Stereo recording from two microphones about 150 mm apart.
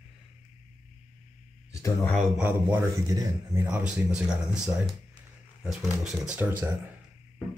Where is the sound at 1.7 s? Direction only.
20° left (ahead or behind).